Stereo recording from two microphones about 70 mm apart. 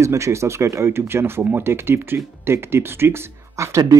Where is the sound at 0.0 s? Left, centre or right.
Right.